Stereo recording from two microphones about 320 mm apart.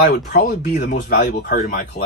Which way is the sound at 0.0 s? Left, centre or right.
Left.